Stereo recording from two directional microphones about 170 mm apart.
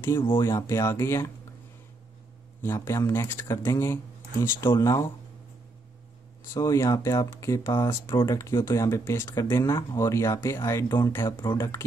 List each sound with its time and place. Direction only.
0.4 s speech: 20° left (ahead or behind)
2.6 s speech: 15° left (ahead or behind)
6.5 s speech: 20° left (ahead or behind)